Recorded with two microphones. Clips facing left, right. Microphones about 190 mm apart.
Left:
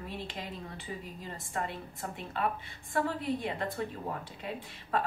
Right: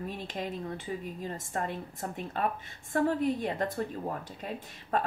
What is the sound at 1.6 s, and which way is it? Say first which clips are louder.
A woman's voice: right 3 dB; 45° right (ahead or behind).